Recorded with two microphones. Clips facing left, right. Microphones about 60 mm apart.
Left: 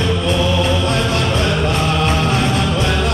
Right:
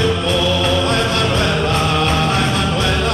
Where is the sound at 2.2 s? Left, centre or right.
Right.